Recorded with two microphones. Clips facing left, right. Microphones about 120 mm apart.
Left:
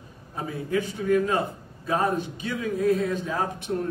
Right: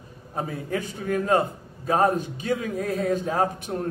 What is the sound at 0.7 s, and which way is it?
A man's voice, 45° right (ahead or behind).